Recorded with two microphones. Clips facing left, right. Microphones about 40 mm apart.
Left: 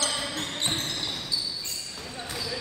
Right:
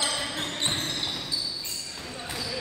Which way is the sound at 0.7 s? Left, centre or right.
Centre.